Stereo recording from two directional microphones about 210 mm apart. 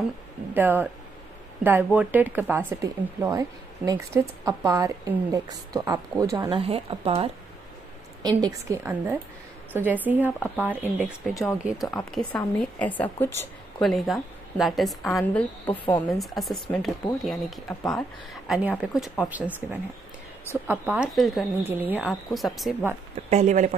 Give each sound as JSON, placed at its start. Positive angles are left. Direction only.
{"t": 0.6, "sound": "a woman's voice", "side_deg": -10}
{"t": 23.3, "sound": "speech", "side_deg": -35}